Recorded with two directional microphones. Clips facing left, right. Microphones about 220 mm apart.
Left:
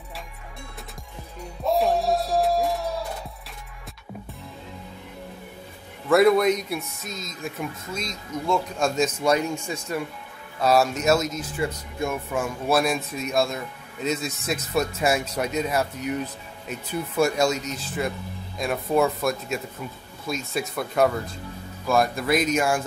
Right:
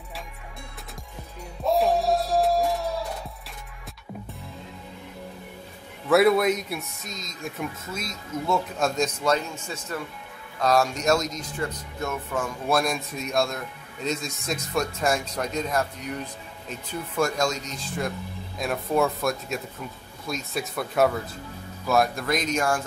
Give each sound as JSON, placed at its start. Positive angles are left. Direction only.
{"t": 1.6, "sound": "music", "side_deg": 0}
{"t": 6.0, "sound": "speech", "side_deg": -5}
{"t": 17.2, "sound": "speech", "side_deg": 5}